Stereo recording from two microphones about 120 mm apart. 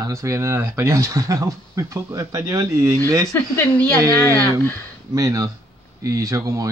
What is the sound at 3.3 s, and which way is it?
Speech, 15° left (ahead or behind).